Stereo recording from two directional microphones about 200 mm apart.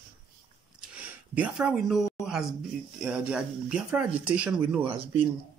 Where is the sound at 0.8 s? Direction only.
5° right (ahead or behind).